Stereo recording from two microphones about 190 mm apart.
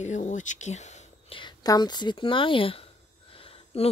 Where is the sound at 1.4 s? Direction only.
20° left (ahead or behind).